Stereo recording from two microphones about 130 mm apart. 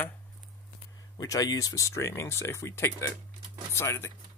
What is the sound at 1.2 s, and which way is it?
Speech, 30° left (ahead or behind).